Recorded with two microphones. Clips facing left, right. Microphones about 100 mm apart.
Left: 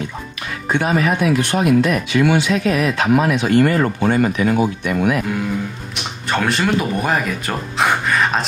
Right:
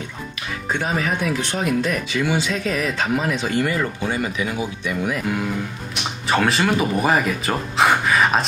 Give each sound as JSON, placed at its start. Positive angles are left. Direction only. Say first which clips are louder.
{"t": 0.7, "sound": "speech", "louder": "left 6 dB", "side_deg": 65}
{"t": 6.2, "sound": "speech", "louder": "even", "side_deg": 0}